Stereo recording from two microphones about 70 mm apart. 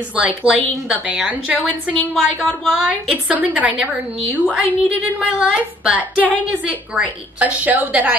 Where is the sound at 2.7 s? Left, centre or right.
Centre.